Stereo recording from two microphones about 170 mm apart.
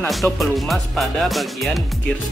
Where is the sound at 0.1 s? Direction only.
Centre (ahead or behind).